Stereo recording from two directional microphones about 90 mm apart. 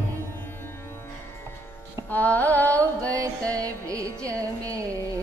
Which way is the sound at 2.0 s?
20° left (ahead or behind).